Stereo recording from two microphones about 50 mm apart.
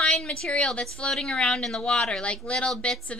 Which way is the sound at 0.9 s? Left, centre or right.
Centre.